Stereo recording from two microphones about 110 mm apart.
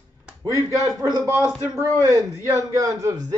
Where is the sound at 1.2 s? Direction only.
25° right (ahead or behind).